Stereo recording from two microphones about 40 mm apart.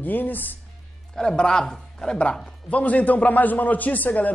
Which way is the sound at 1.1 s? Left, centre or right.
Left.